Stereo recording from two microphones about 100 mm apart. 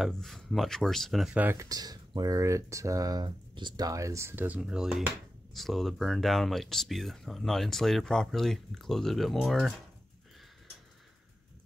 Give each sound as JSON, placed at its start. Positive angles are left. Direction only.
{"t": 0.0, "sound": "speech", "side_deg": 5}
{"t": 1.5, "sound": "speech", "side_deg": -35}
{"t": 4.6, "sound": "speech", "side_deg": -5}